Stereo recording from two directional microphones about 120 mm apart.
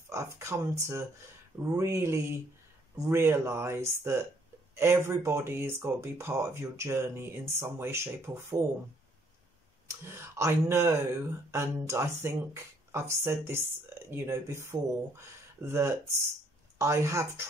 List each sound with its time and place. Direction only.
0.1 s speech: 25° right (ahead or behind)
9.8 s speech: 20° right (ahead or behind)